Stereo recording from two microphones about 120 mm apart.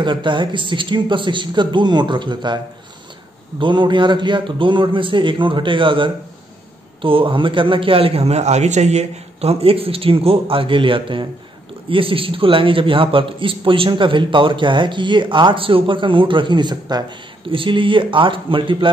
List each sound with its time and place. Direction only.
0.0 s a man's voice: 40° right (ahead or behind)